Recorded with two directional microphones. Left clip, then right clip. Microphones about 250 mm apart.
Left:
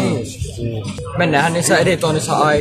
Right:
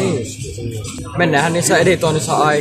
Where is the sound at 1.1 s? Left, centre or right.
Centre.